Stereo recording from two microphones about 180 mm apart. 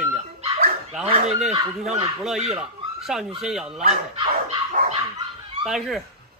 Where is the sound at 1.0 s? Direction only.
30° right (ahead or behind).